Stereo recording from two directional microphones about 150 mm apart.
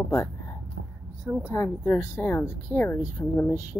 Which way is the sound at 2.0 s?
15° left (ahead or behind).